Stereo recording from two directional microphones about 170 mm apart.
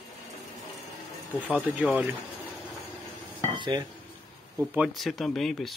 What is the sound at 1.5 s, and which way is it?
Speech, 5° right (ahead or behind).